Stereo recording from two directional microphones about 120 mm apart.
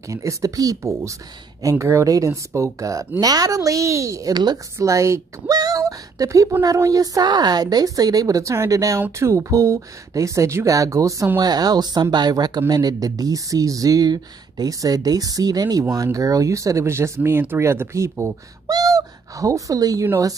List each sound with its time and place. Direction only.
0.1 s speech: 25° right (ahead or behind)
4.7 s a woman's voice: 25° right (ahead or behind)